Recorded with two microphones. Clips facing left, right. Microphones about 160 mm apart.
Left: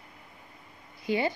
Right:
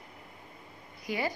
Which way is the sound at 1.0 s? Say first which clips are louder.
Left 5 dB; 25° left (ahead or behind).